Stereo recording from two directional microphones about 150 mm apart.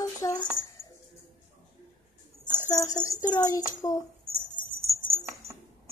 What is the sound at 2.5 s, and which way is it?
Speech, 25° left (ahead or behind).